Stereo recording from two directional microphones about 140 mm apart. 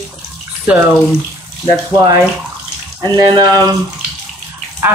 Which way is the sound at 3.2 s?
30° right (ahead or behind).